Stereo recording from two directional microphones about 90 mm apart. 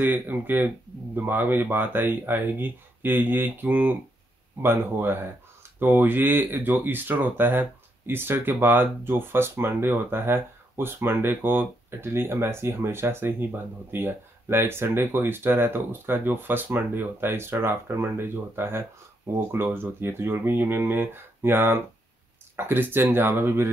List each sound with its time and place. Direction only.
0.0 s speech: 20° right (ahead or behind)